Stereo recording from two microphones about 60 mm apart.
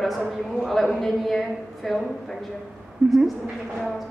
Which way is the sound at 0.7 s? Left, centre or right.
Centre.